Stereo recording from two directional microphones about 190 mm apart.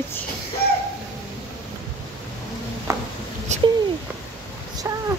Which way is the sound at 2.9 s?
15° right (ahead or behind).